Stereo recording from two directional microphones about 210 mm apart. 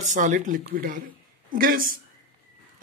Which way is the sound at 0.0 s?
35° right (ahead or behind).